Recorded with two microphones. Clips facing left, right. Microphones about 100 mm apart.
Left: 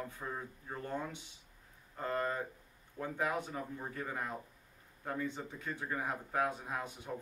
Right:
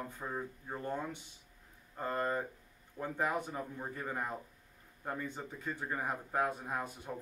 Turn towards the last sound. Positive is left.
turn(degrees=-5)  # may be behind; listen again after turning